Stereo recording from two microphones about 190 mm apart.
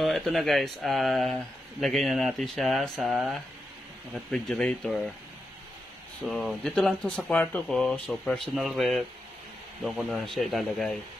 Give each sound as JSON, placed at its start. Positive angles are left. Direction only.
{"t": 0.0, "sound": "speech", "side_deg": 0}
{"t": 6.2, "sound": "speech", "side_deg": 0}